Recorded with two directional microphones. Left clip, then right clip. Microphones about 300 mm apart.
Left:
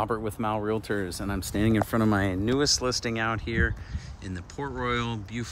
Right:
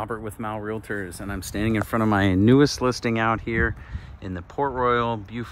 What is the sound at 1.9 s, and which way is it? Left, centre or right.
Speech, centre.